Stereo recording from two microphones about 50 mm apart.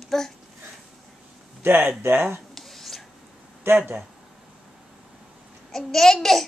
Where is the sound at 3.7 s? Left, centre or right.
Right.